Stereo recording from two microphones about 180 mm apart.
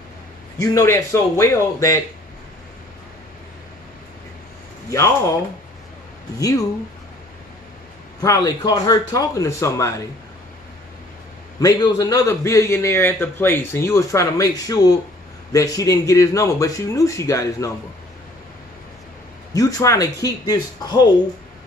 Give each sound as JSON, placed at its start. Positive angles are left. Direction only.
{"t": 0.6, "sound": "a man's voice", "side_deg": 15}
{"t": 4.9, "sound": "a man's voice", "side_deg": 15}
{"t": 8.2, "sound": "a man's voice", "side_deg": 20}
{"t": 11.6, "sound": "a man's voice", "side_deg": 20}
{"t": 19.5, "sound": "speech", "side_deg": 20}